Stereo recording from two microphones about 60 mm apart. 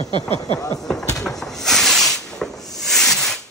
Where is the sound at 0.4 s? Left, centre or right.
Left.